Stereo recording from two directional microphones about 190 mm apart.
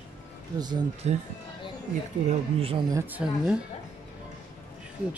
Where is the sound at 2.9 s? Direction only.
10° right (ahead or behind).